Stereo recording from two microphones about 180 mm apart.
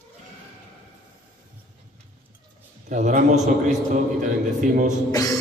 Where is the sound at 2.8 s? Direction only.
45° right (ahead or behind).